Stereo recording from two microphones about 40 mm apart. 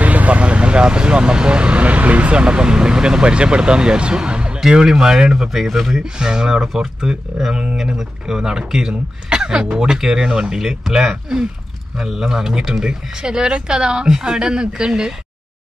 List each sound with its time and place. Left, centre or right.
0.0 s speech: right
4.6 s speech: centre
6.1 s speech: centre
6.7 s speech: centre